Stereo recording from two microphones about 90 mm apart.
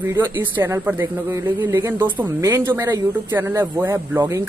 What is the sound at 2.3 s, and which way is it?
A man's voice, 35° right (ahead or behind).